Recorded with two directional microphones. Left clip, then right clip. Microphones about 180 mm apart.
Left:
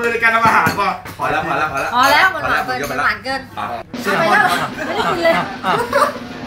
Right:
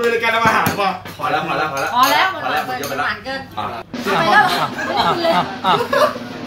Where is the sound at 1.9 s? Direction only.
65° left (ahead or behind).